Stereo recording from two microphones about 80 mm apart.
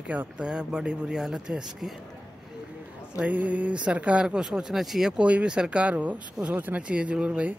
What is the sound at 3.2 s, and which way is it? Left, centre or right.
Speech, centre.